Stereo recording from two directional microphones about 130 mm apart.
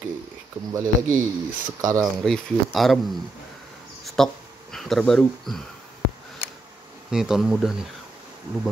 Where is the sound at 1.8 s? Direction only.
25° right (ahead or behind).